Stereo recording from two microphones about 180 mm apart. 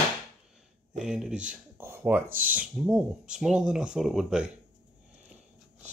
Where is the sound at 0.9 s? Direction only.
5° right (ahead or behind).